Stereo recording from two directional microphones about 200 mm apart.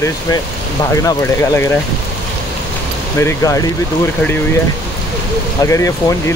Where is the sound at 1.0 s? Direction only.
15° left (ahead or behind).